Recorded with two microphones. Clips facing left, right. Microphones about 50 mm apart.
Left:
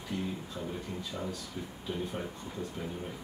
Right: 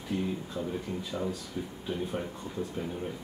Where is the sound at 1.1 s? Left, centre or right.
Right.